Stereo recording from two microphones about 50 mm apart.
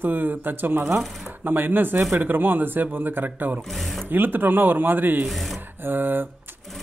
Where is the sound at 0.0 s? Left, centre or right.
Right.